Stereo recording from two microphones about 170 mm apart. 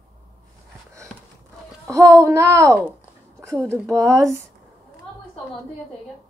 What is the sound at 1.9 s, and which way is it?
Child singing, 20° right (ahead or behind).